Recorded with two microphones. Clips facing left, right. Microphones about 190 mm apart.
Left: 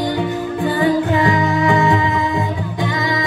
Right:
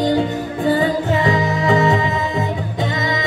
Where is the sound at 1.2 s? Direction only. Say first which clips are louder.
Left 1 dB; 20° right (ahead or behind).